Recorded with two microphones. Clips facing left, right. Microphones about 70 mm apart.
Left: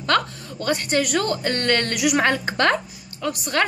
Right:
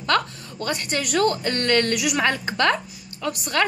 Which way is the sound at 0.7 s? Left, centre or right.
Left.